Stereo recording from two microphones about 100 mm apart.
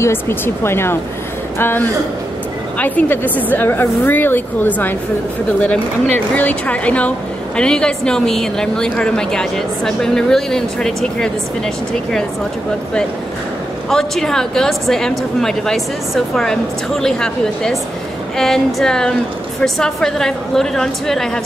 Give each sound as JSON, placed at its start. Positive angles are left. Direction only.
{"t": 0.0, "sound": "a woman's voice", "side_deg": 25}
{"t": 13.8, "sound": "speech", "side_deg": 5}